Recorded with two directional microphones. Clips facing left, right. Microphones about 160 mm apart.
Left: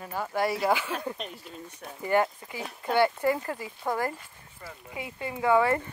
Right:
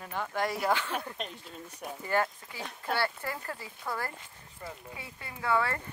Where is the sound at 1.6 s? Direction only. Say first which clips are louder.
Right 2 dB; 10° right (ahead or behind).